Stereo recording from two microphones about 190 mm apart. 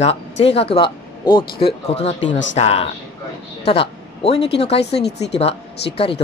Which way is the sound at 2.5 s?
35° left (ahead or behind).